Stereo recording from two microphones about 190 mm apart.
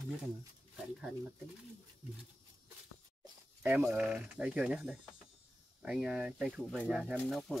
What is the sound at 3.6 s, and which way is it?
Speech, 5° right (ahead or behind).